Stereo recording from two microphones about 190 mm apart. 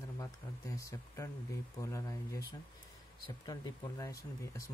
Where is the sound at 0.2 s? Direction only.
15° left (ahead or behind).